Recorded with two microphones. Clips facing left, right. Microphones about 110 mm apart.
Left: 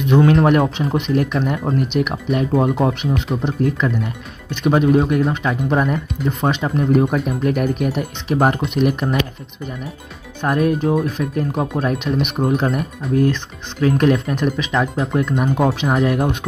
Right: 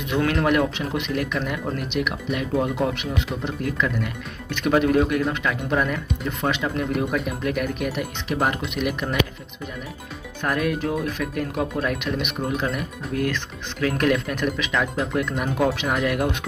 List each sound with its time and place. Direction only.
0.2 s speech: 35° left (ahead or behind)
10.4 s speech: 30° left (ahead or behind)
13.1 s speech: 30° left (ahead or behind)